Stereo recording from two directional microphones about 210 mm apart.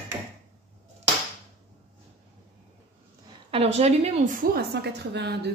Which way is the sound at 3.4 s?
30° right (ahead or behind).